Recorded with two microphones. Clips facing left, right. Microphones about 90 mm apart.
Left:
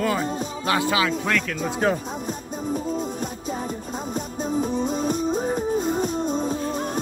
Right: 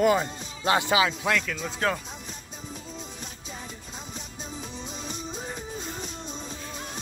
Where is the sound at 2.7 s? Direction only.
45° left (ahead or behind).